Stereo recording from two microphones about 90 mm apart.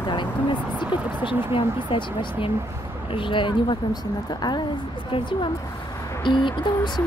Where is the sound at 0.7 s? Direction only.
70° left (ahead or behind); by 4.6 s 50° left (ahead or behind).